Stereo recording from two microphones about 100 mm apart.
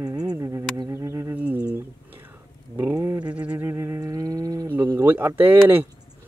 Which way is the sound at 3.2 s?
10° right (ahead or behind).